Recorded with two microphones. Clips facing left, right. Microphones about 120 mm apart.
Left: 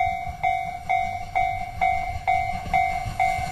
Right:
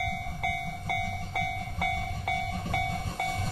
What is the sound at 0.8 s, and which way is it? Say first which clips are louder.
Train: left 9 dB; 45° left (ahead or behind).